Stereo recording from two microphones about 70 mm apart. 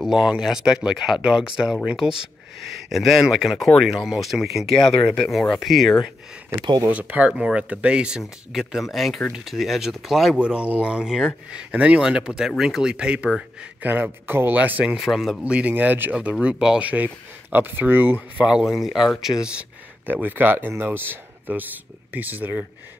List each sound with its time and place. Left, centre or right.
0.0 s speech: centre
2.9 s speech: centre
6.9 s speech: centre
10.4 s speech: centre
11.7 s speech: centre
12.9 s speech: centre
15.0 s speech: centre
15.4 s speech: centre
18.5 s speech: centre
20.1 s speech: right